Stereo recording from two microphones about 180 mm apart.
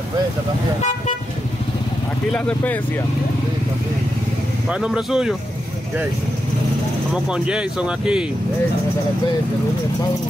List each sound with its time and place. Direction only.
2.3 s speech: 5° left (ahead or behind)
4.6 s speech: 5° right (ahead or behind)
7.2 s speech: 5° right (ahead or behind)